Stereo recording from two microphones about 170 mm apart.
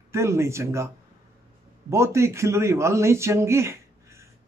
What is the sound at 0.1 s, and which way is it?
Speech, 15° right (ahead or behind).